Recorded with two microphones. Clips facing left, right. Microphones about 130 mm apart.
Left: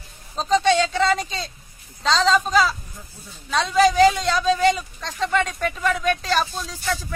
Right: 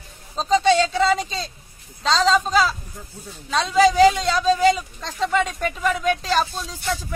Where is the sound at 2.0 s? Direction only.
Centre (ahead or behind).